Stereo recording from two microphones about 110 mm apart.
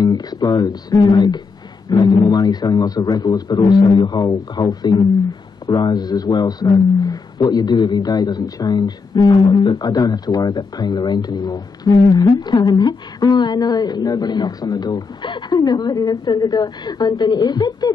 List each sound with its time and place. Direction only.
0.0 s a man's voice: 35° left (ahead or behind)